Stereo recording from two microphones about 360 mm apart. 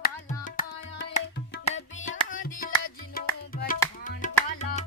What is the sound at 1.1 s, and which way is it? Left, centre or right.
Tabla, centre.